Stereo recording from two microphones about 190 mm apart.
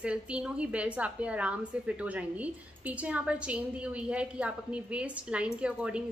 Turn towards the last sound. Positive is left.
turn(degrees=-5)  # may be behind; listen again after turning